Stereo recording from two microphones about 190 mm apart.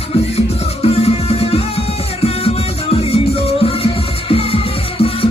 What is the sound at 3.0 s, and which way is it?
Music, 30° left (ahead or behind).